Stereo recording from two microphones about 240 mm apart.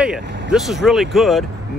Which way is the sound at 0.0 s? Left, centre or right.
Centre.